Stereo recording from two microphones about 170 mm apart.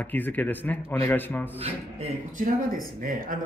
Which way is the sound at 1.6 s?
40° right (ahead or behind).